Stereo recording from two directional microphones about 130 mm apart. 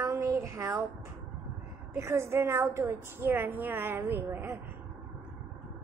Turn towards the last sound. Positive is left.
turn(degrees=-15)  # may be behind; listen again after turning